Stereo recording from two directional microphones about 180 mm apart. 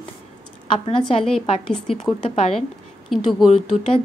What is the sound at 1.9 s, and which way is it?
Speech, 35° left (ahead or behind).